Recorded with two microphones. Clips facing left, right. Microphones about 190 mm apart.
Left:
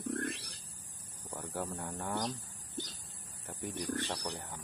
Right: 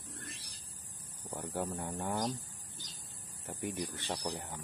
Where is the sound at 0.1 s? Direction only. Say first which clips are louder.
Left 13 dB; 65° left (ahead or behind).